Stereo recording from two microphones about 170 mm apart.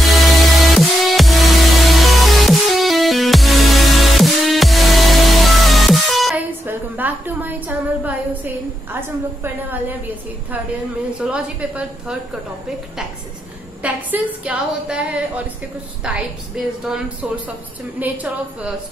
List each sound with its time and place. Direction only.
0.0 s music: centre (ahead or behind)
6.6 s a sound: 10° right (ahead or behind)
9.4 s a woman's voice: 10° right (ahead or behind)
13.8 s a woman's voice: 10° right (ahead or behind)